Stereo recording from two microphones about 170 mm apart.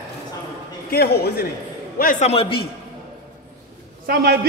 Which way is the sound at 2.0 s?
55° left (ahead or behind).